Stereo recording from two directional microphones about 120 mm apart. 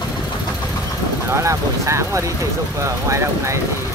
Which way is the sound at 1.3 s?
25° right (ahead or behind).